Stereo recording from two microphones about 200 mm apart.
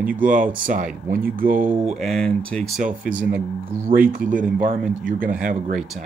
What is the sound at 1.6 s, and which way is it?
Speech, centre (ahead or behind).